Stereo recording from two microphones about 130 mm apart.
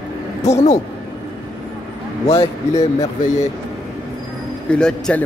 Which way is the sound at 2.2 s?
50° left (ahead or behind).